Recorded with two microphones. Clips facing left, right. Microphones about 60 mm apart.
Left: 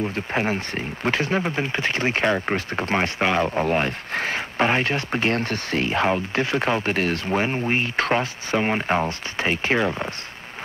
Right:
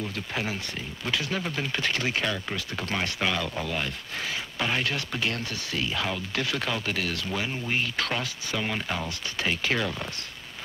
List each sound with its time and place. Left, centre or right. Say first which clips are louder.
0.0 s speech: left 7 dB; left